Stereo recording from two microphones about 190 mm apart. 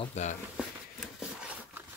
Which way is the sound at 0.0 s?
35° left (ahead or behind).